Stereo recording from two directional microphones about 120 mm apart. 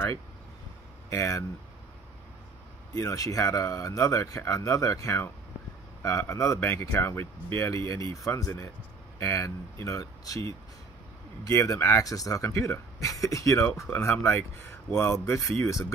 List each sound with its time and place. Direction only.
1.1 s speech: 25° left (ahead or behind)
2.9 s speech: 25° left (ahead or behind)
11.4 s speech: 25° left (ahead or behind)